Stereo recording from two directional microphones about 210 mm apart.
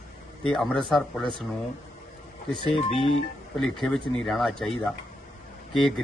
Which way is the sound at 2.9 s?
25° left (ahead or behind).